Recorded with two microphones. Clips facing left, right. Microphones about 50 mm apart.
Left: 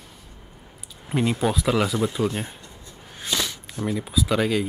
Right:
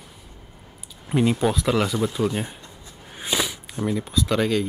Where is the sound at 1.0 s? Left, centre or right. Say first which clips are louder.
Right 2 dB; centre.